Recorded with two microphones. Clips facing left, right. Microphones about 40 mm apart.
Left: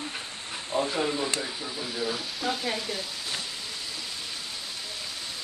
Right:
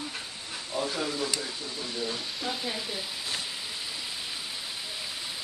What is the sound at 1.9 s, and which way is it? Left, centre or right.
Speech, centre.